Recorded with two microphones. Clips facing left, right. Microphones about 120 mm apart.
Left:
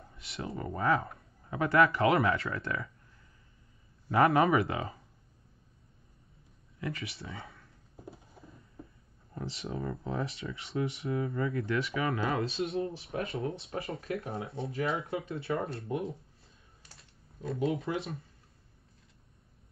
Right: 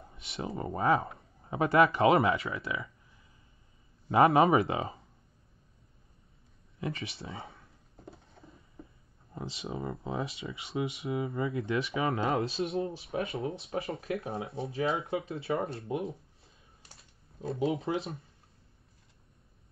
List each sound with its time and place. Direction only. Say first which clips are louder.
0.0 s speech: right 2 dB; 25° right (ahead or behind)
2.3 s speech: even; centre (ahead or behind)
4.1 s speech: right 2 dB; 25° right (ahead or behind)
6.8 s speech: right 1 dB; 25° right (ahead or behind)
7.9 s a sound: left 2 dB; centre (ahead or behind)
9.3 s speech: even; 20° right (ahead or behind)
13.2 s speech: even; centre (ahead or behind)
13.7 s speech: right 2 dB; 25° right (ahead or behind)
16.0 s computer keyboard: even; centre (ahead or behind)
17.4 s speech: right 1 dB; 25° right (ahead or behind)